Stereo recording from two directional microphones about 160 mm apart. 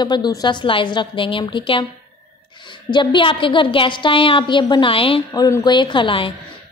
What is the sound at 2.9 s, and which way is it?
A woman's voice, 30° left (ahead or behind).